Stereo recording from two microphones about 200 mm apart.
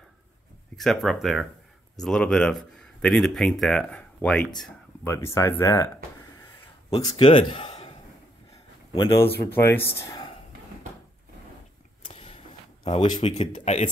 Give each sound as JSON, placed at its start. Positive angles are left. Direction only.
{"t": 0.7, "sound": "a man's voice", "side_deg": 0}
{"t": 6.4, "sound": "a sound", "side_deg": 25}
{"t": 8.9, "sound": "a man's voice", "side_deg": 15}
{"t": 12.0, "sound": "vehicle", "side_deg": 30}
{"t": 13.1, "sound": "speech", "side_deg": 30}